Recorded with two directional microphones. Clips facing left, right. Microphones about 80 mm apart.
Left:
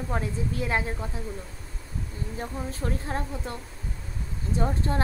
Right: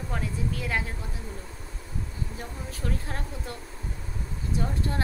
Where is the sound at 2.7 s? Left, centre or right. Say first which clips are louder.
Even; left.